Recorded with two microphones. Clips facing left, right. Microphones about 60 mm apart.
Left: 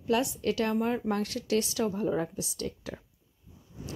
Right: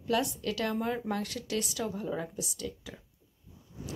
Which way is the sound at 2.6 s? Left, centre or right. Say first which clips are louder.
Left 4 dB; left.